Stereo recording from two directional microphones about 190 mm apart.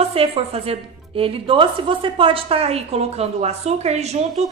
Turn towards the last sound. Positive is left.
turn(degrees=-35)  # may be behind; listen again after turning